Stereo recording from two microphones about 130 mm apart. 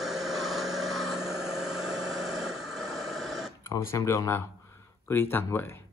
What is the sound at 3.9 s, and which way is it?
Speech, 20° left (ahead or behind).